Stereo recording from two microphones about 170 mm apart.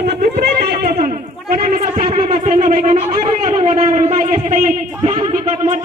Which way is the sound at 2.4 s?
50° right (ahead or behind).